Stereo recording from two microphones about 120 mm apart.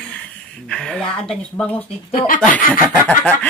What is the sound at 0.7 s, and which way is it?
Speech, 5° left (ahead or behind).